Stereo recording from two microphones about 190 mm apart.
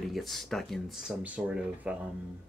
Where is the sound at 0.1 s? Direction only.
Centre (ahead or behind).